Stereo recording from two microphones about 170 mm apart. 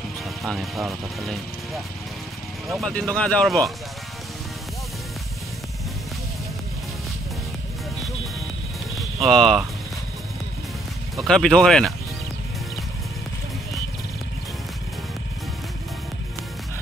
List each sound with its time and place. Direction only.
0.4 s speech: centre (ahead or behind)
2.7 s speech: 5° left (ahead or behind)
8.9 s music: centre (ahead or behind)
11.2 s speech: 5° left (ahead or behind)